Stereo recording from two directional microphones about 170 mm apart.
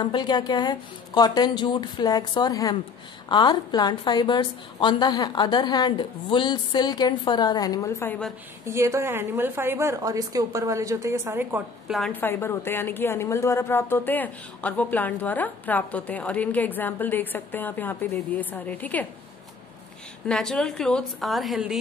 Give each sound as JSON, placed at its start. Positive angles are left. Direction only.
{"t": 0.0, "sound": "a woman's voice", "side_deg": 25}
{"t": 8.6, "sound": "a woman's voice", "side_deg": -15}
{"t": 11.9, "sound": "a woman's voice", "side_deg": 5}
{"t": 20.2, "sound": "a woman's voice", "side_deg": 5}